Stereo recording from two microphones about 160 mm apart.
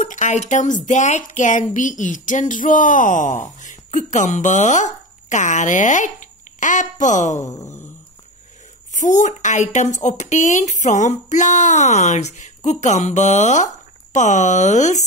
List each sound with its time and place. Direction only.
0.0 s speech: 50° left (ahead or behind)
7.4 s a sound: 20° left (ahead or behind)
8.9 s speech: 50° left (ahead or behind)